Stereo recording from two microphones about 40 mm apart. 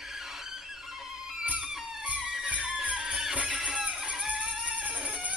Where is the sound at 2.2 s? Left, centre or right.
Centre.